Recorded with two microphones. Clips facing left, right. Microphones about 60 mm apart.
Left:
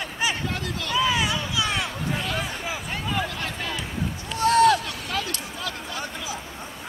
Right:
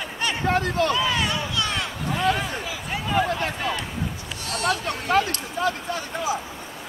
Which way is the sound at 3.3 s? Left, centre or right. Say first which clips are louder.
Right 6 dB; right.